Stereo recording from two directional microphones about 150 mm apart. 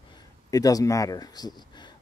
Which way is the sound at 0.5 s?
25° left (ahead or behind).